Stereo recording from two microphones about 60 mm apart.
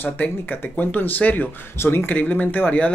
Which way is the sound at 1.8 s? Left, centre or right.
Left.